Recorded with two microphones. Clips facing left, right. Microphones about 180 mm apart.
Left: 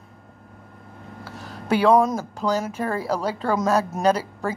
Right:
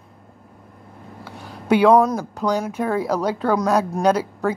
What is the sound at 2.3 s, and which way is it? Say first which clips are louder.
Speech: right 2 dB; 5° left (ahead or behind).